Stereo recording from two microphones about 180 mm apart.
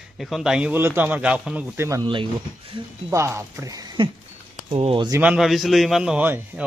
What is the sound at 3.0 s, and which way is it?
A man's voice, 15° right (ahead or behind).